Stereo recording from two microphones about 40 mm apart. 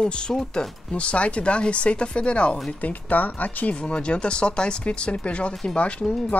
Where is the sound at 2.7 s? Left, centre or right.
Left.